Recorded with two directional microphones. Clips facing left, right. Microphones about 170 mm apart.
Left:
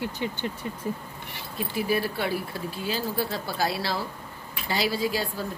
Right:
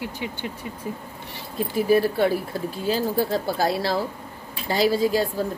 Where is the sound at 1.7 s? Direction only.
45° right (ahead or behind).